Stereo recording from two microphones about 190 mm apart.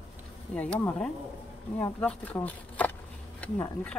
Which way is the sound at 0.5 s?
10° left (ahead or behind).